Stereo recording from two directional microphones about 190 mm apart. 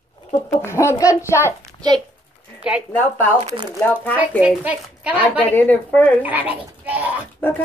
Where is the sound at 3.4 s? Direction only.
25° right (ahead or behind).